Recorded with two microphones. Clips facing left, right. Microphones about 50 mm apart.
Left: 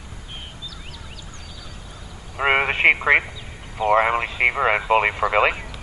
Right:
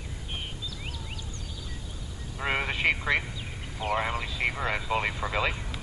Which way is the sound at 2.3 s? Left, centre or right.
Left.